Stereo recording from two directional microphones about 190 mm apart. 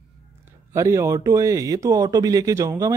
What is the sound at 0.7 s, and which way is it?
Speech, 15° right (ahead or behind).